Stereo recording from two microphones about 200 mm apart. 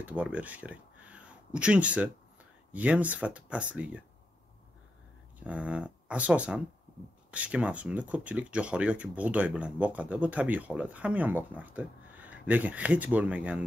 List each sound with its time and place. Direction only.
0.0 s speech: 10° right (ahead or behind)
5.4 s speech: 5° right (ahead or behind)